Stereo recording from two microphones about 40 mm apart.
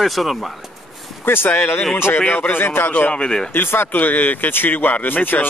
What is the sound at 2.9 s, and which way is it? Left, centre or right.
Speech, left.